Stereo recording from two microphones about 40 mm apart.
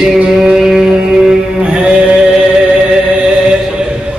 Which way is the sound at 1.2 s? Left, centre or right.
Right.